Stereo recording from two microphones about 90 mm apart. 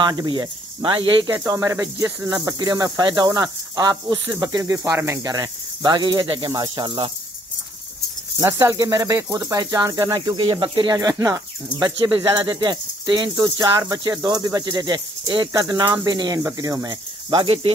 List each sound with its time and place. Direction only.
0.0 s speech: 45° right (ahead or behind)
0.3 s speech: 65° right (ahead or behind)
1.2 s speech: 40° right (ahead or behind)
4.7 s speech: 30° right (ahead or behind); by 7.1 s 60° right (ahead or behind)
8.5 s speech: 35° right (ahead or behind)
10.3 s speech: 65° right (ahead or behind)
11.0 s speech: 45° right (ahead or behind)
12.2 s speech: 55° right (ahead or behind)
13.6 s speech: 40° right (ahead or behind)
15.5 s speech: 40° right (ahead or behind); by 17.7 s 75° right (ahead or behind)